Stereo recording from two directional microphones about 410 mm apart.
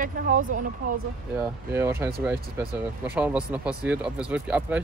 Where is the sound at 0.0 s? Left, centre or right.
Centre.